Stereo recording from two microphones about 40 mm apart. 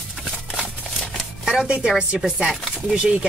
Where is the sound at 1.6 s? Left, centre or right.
Right.